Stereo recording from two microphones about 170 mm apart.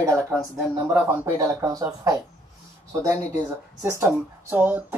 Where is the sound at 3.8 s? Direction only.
15° right (ahead or behind).